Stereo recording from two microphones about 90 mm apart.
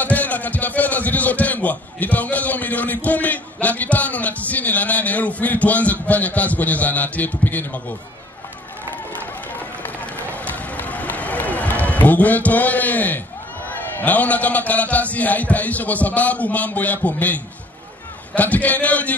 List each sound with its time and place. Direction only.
0.0 s a man's voice: 20° left (ahead or behind)
9.8 s run: 20° left (ahead or behind)
13.7 s a man's voice: 20° left (ahead or behind)